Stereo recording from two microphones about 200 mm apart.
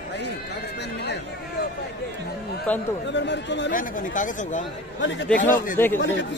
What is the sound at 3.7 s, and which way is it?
Speech, 40° left (ahead or behind).